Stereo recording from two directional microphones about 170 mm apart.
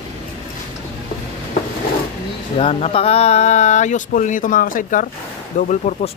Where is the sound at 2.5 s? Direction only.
35° left (ahead or behind).